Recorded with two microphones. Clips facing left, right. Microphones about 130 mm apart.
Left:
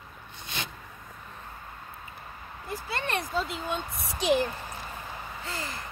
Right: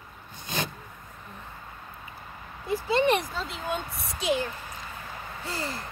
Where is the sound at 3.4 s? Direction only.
Centre (ahead or behind).